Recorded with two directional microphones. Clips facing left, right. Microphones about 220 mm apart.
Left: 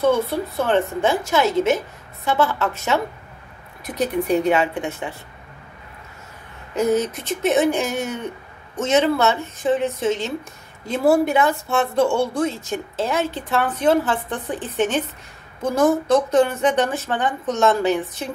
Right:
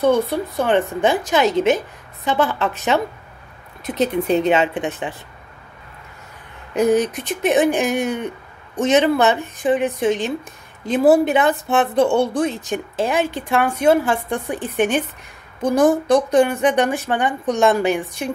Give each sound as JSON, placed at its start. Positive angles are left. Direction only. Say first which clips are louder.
{"t": 0.0, "sound": "speech", "louder": "right 2 dB", "side_deg": -15}
{"t": 6.7, "sound": "speech", "louder": "right 3 dB", "side_deg": -15}